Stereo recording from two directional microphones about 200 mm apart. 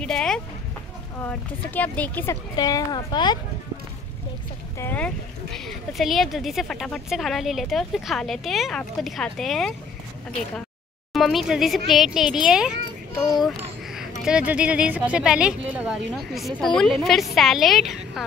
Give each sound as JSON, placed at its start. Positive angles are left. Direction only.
{"t": 0.0, "sound": "a sound", "side_deg": 5}
{"t": 1.2, "sound": "speech", "side_deg": 10}
{"t": 2.5, "sound": "a woman's voice", "side_deg": 20}
{"t": 4.7, "sound": "speech", "side_deg": 10}
{"t": 11.1, "sound": "speech", "side_deg": 0}
{"t": 14.2, "sound": "speech", "side_deg": -5}